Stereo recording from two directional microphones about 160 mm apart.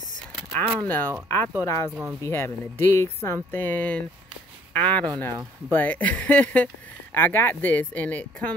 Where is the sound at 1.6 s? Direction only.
20° left (ahead or behind).